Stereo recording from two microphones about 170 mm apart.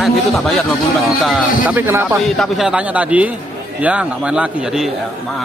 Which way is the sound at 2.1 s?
Centre (ahead or behind).